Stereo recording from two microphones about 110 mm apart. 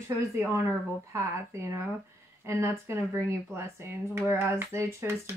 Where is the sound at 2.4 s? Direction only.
25° right (ahead or behind).